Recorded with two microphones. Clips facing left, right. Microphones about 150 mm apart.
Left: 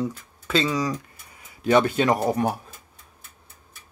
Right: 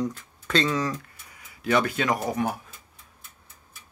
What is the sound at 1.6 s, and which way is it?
Speech, 25° left (ahead or behind).